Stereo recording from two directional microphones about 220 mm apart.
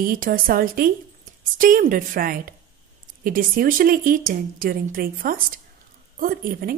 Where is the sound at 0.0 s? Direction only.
40° right (ahead or behind).